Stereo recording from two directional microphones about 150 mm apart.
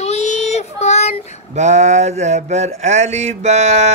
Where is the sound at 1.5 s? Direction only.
50° right (ahead or behind).